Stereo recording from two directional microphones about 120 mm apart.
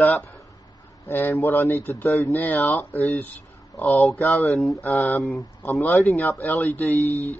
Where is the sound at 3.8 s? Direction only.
10° left (ahead or behind).